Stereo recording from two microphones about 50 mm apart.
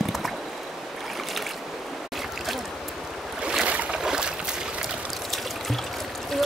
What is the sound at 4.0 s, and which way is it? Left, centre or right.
Boat, centre.